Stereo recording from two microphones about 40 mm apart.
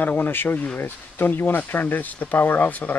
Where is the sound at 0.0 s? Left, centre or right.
Left.